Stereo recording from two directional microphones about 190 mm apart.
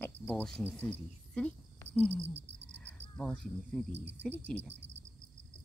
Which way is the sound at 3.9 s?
65° right (ahead or behind).